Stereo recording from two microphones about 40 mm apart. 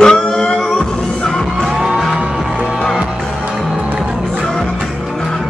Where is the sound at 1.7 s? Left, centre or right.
Centre.